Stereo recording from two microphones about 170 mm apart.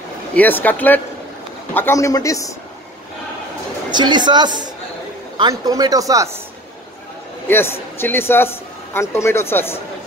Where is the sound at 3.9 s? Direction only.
25° right (ahead or behind).